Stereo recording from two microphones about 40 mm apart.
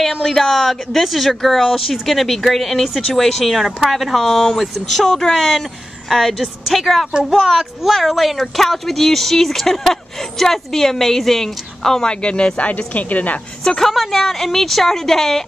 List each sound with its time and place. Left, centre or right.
0.0 s speech: centre
6.0 s speech: centre
12.1 s speech: left
13.7 s speech: centre